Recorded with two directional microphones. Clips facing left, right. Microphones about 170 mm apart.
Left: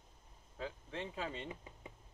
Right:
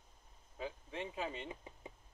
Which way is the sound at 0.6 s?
15° right (ahead or behind).